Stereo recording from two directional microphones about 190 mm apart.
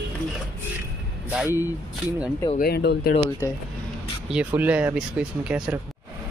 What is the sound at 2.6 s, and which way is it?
Speech, 60° left (ahead or behind).